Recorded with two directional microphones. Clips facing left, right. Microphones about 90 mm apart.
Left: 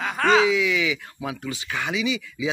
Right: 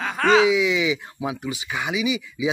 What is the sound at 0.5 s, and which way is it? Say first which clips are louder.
Speech: right 2 dB; 20° right (ahead or behind).